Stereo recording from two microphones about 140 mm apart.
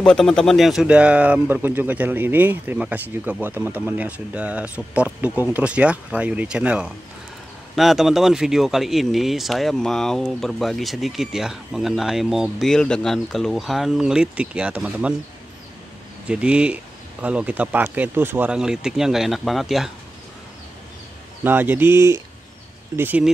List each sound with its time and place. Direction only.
0.0 s speech: 5° left (ahead or behind)
16.3 s speech: 10° right (ahead or behind)
21.5 s speech: 15° right (ahead or behind)